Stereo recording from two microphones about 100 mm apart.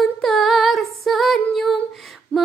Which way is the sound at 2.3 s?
15° left (ahead or behind).